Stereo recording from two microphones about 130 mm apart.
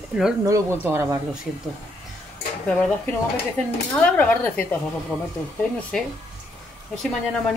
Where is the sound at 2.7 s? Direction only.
5° left (ahead or behind).